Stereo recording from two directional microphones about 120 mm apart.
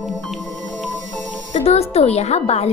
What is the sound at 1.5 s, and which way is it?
A woman's voice, 60° left (ahead or behind).